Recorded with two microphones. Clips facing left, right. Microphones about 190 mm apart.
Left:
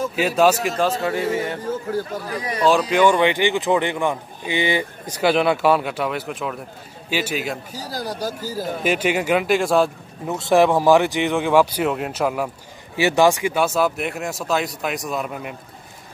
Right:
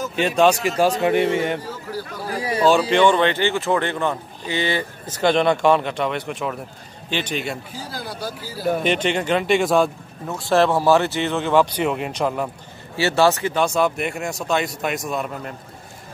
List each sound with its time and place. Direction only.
0.4 s speech: 5° left (ahead or behind)
0.7 s speech: 15° right (ahead or behind)
1.7 s a man's voice: 50° left (ahead or behind)
2.2 s speech: 30° right (ahead or behind)
2.7 s speech: centre (ahead or behind)
7.7 s speech: 40° left (ahead or behind)
8.8 s speech: 5° left (ahead or behind)
10.2 s speech: 20° left (ahead or behind); by 15.5 s centre (ahead or behind)